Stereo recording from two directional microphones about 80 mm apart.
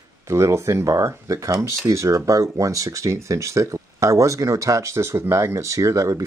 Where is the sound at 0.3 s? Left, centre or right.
Right.